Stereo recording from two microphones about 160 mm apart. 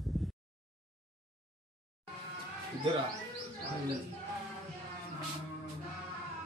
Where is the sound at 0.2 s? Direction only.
Centre (ahead or behind).